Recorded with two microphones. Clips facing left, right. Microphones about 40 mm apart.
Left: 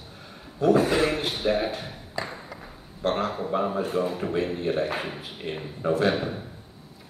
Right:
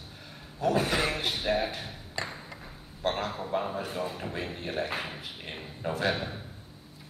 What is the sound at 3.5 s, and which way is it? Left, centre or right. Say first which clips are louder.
A man's voice: left 6 dB; centre.